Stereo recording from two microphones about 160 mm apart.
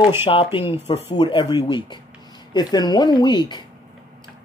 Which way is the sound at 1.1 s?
30° left (ahead or behind).